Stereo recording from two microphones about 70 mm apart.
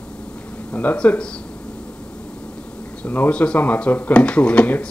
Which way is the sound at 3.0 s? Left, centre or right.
Left.